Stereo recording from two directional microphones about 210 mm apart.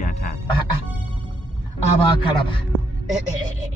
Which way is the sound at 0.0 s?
40° left (ahead or behind).